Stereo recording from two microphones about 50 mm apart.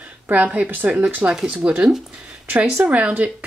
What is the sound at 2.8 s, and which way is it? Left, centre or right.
Speech, right.